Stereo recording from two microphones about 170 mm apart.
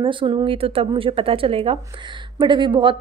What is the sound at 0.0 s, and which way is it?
A woman's voice, 30° right (ahead or behind).